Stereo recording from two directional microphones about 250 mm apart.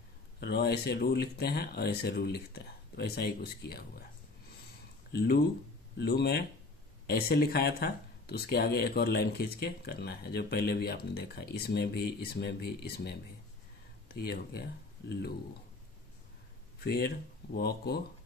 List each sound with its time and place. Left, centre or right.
0.4 s speech: left
5.1 s speech: left
16.8 s speech: left